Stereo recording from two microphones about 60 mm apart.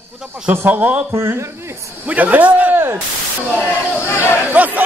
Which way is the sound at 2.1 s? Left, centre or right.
Right.